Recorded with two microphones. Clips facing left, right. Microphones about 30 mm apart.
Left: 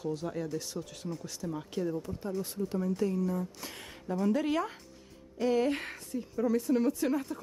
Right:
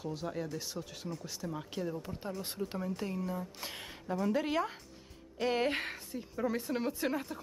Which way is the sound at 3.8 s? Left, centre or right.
Centre.